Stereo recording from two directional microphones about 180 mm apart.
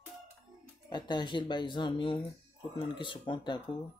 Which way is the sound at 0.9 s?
25° left (ahead or behind).